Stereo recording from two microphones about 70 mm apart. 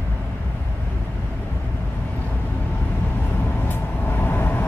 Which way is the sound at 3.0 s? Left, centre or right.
Left.